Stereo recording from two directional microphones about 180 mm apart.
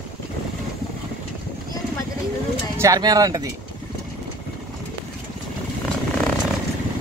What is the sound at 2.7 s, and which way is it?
Speech, 20° right (ahead or behind).